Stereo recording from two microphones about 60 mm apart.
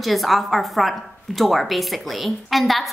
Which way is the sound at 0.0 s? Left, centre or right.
Centre.